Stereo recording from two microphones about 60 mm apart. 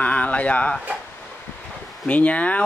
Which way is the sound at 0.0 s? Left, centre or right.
Left.